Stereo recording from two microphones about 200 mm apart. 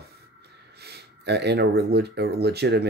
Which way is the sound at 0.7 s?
55° right (ahead or behind).